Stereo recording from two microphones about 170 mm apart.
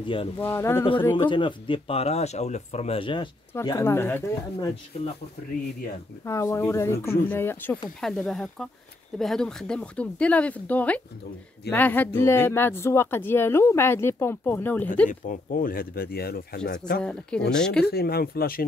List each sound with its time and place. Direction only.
0.0 s speech: 30° left (ahead or behind)
0.4 s speech: 15° left (ahead or behind)
1.1 s speech: 30° left (ahead or behind)
3.5 s speech: 15° left (ahead or behind)
6.2 s speech: 15° left (ahead or behind)
15.0 s speech: 50° left (ahead or behind); by 17.0 s 70° left (ahead or behind)
17.0 s speech: 5° left (ahead or behind)
17.8 s speech: 65° left (ahead or behind)